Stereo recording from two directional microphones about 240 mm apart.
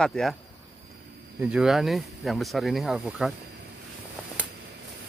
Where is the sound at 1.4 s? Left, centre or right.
Centre.